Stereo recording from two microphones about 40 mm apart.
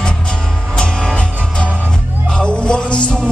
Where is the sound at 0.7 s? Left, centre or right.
Left.